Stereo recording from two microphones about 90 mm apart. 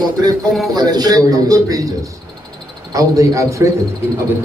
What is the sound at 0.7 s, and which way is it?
A man's voice, 45° right (ahead or behind).